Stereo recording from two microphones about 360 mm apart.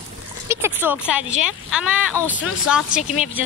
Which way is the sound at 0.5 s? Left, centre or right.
Centre.